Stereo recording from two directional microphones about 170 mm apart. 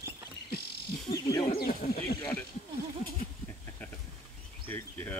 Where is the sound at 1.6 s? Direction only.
60° left (ahead or behind).